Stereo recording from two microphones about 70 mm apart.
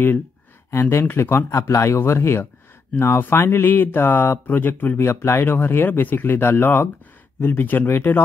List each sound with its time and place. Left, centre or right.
0.7 s speech: left